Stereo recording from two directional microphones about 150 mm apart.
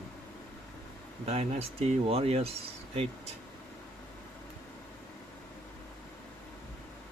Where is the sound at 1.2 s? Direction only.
45° right (ahead or behind).